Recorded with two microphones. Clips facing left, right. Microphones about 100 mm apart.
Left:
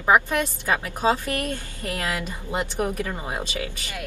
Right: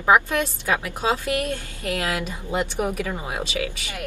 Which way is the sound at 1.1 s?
10° right (ahead or behind).